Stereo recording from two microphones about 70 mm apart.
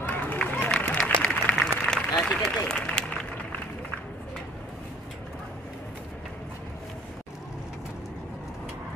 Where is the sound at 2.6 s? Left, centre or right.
Centre.